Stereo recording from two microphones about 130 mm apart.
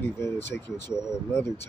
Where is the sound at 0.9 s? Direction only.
5° right (ahead or behind).